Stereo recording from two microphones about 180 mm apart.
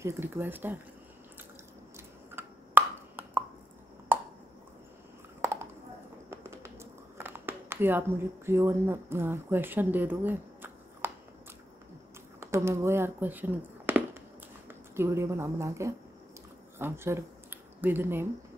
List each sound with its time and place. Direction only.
0.0 s speech: 10° right (ahead or behind)
2.0 s plop: 10° right (ahead or behind)
6.3 s a sound: 15° right (ahead or behind)
8.5 s speech: 15° right (ahead or behind)
12.4 s speech: 15° right (ahead or behind)